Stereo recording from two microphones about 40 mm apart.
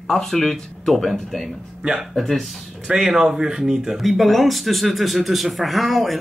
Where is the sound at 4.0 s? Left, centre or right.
Centre.